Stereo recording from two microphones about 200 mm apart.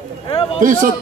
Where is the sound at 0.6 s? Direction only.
40° right (ahead or behind).